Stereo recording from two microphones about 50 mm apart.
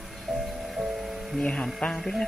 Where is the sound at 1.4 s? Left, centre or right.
Centre.